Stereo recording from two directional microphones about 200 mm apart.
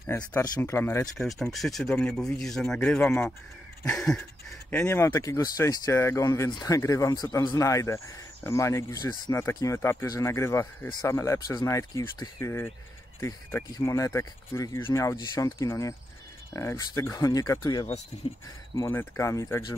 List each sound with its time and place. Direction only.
0.3 s speech: 10° left (ahead or behind)
1.1 s speech: centre (ahead or behind); by 17.8 s 20° left (ahead or behind)
18.1 s speech: 30° left (ahead or behind)
18.8 s speech: 10° left (ahead or behind)